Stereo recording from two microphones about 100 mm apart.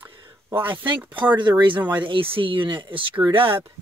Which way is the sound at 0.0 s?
55° right (ahead or behind).